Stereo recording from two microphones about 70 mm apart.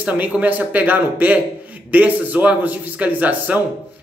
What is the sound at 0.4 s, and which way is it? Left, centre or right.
Speech, right.